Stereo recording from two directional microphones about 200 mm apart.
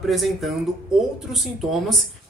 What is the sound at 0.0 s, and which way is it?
A woman's voice, centre (ahead or behind).